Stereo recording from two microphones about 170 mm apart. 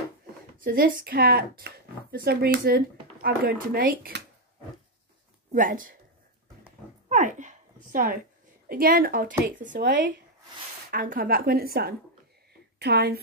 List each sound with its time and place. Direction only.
0.7 s speech: 60° right (ahead or behind)
5.5 s speech: 55° right (ahead or behind)
7.1 s a sound: 45° right (ahead or behind)
8.6 s speech: 60° right (ahead or behind)
12.7 s speech: 75° right (ahead or behind)